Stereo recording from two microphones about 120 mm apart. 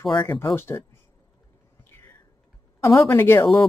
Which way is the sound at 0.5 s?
20° left (ahead or behind).